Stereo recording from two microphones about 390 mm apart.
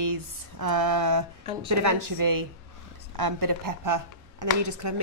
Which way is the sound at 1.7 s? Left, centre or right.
Right.